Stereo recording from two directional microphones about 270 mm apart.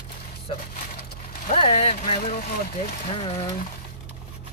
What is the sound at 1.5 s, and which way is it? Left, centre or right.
Speech, left.